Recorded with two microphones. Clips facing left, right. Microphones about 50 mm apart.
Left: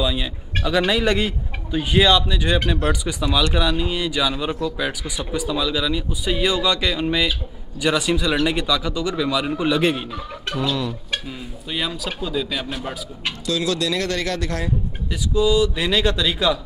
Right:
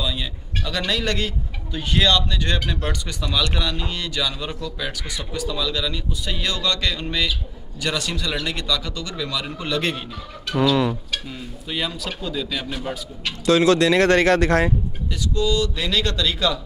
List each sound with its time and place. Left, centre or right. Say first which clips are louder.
0.0 s a man's voice: left 4 dB; centre
11.2 s speech: left 1 dB; centre
13.5 s speech: right 7 dB; right
15.3 s a man's voice: left 4 dB; centre